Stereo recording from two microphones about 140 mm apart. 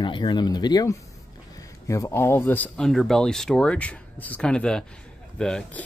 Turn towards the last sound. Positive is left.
turn(degrees=10)  # may be behind; listen again after turning